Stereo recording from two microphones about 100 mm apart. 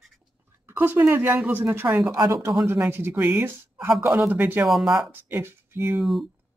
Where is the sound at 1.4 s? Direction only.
20° right (ahead or behind).